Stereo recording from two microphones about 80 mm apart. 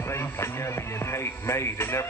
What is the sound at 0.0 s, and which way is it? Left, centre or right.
Music, left.